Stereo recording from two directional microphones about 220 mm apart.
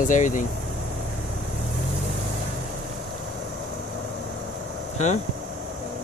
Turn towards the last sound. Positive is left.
turn(degrees=35)  # may be behind; listen again after turning